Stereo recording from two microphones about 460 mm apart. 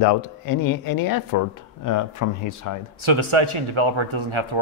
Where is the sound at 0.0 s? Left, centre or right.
Left.